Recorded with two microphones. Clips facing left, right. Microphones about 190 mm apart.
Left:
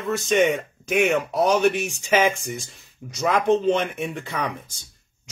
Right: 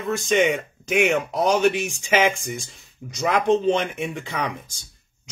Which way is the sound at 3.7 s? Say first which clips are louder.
Even; centre (ahead or behind).